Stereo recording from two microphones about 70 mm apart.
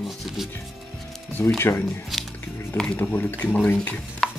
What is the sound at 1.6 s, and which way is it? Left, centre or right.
Speech, left.